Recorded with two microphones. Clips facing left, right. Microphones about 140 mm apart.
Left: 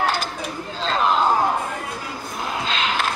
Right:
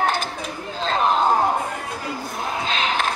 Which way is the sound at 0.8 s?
45° right (ahead or behind).